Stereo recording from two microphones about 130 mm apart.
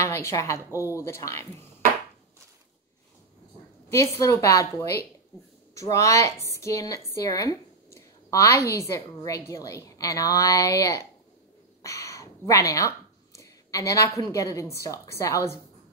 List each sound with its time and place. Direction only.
0.0 s speech: 20° left (ahead or behind)
3.9 s speech: 25° left (ahead or behind)